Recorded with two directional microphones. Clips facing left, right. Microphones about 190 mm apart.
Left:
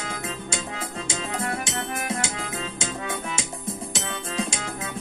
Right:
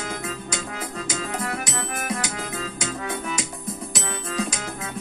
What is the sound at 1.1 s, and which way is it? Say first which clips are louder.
Music: even; 25° left (ahead or behind).